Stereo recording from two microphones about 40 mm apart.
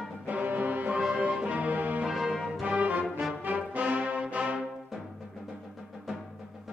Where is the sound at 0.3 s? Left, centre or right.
Right.